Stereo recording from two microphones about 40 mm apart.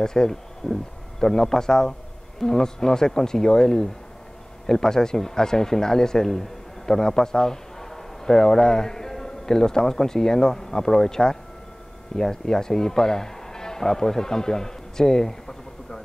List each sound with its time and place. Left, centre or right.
0.0 s a man's voice: centre